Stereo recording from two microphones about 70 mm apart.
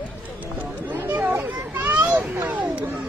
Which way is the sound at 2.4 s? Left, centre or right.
Right.